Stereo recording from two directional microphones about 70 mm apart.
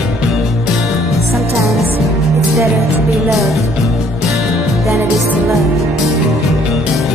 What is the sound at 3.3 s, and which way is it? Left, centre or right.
Music, centre.